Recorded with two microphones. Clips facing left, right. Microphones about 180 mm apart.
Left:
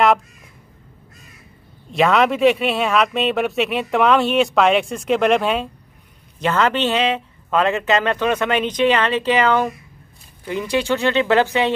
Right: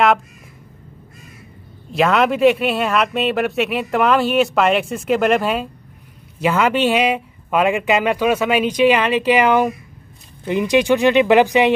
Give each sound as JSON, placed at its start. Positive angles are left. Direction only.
{"t": 1.9, "sound": "speech", "side_deg": 0}